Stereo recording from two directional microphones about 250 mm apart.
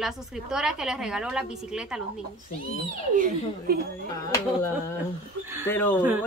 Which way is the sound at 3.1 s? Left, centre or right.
Right.